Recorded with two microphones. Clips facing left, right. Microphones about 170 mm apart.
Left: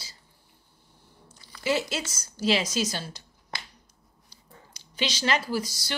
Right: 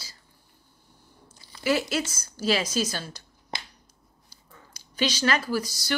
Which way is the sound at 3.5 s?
25° right (ahead or behind).